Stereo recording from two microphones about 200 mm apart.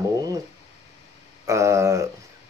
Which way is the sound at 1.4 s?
15° right (ahead or behind).